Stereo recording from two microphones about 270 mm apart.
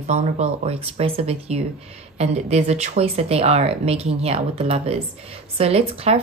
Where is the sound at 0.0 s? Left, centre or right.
Right.